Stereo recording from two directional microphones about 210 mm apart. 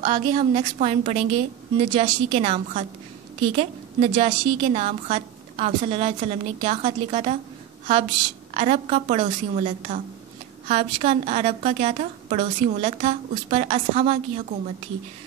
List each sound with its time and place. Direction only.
0.0 s a woman's voice: 25° right (ahead or behind)
8.5 s a woman's voice: 30° right (ahead or behind)